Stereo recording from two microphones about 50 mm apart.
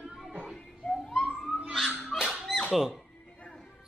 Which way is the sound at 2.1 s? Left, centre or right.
Centre.